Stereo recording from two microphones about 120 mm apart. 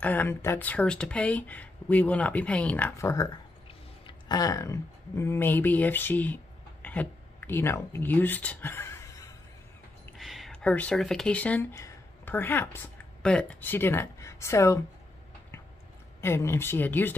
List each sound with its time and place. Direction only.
0.0 s speech: 15° left (ahead or behind)
3.0 s speech: 25° left (ahead or behind)
10.1 s a sound: centre (ahead or behind)
11.0 s speech: 5° left (ahead or behind); by 14.8 s 25° left (ahead or behind)
16.2 s speech: 20° left (ahead or behind)